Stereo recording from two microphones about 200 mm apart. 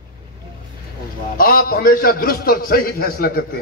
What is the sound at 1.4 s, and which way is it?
A man's voice, 45° left (ahead or behind).